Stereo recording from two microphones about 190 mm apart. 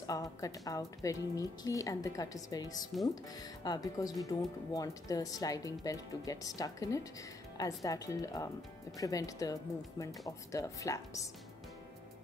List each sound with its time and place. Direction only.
0.0 s speech: 20° left (ahead or behind)